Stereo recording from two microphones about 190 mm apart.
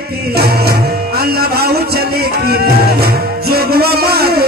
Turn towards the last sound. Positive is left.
turn(degrees=-55)  # may be behind; listen again after turning